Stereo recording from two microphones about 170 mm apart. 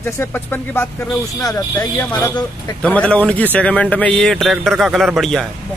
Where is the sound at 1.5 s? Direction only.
20° left (ahead or behind).